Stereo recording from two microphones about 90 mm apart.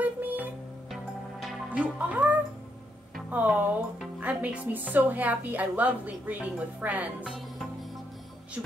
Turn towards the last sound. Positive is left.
turn(degrees=-15)  # may be behind; listen again after turning